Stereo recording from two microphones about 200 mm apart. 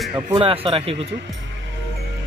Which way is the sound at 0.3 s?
25° right (ahead or behind).